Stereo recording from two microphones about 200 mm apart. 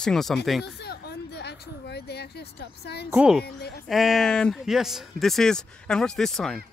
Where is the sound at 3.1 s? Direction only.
5° right (ahead or behind).